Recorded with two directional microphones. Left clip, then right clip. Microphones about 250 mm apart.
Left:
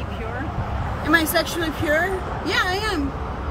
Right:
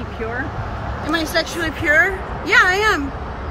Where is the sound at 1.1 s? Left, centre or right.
Centre.